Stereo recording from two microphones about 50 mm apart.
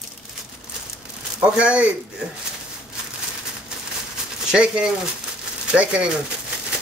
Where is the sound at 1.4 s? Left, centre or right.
Right.